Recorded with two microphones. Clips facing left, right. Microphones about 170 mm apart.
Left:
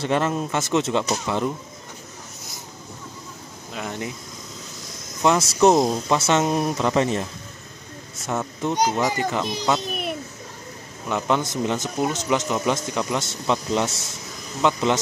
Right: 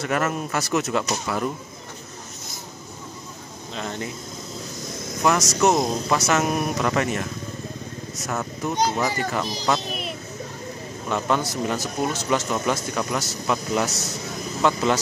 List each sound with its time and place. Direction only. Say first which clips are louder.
0.0 s speech: left 2 dB; 30° left (ahead or behind)
3.7 s speech: even; 10° left (ahead or behind)
5.2 s speech: left 3 dB; 25° left (ahead or behind)
8.6 s speech: left 1 dB; 25° left (ahead or behind)
11.1 s speech: left 1 dB; 15° left (ahead or behind)